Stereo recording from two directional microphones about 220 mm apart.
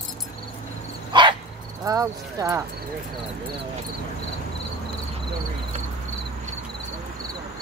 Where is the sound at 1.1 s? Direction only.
20° right (ahead or behind).